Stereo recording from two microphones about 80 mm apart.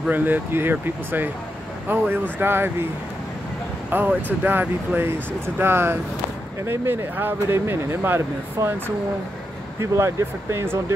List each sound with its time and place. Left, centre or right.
0.1 s speech: right
3.9 s speech: right